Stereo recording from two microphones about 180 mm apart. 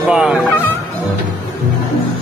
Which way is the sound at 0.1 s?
5° right (ahead or behind).